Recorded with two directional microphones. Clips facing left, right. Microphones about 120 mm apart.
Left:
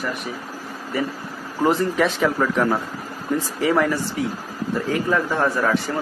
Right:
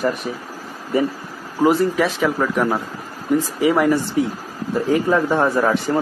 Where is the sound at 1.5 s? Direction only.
10° right (ahead or behind).